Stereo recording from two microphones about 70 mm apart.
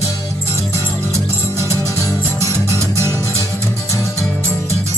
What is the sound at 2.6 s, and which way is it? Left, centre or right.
Music, right.